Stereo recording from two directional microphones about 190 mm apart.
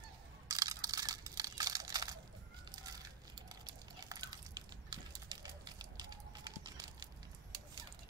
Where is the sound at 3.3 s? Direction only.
20° right (ahead or behind).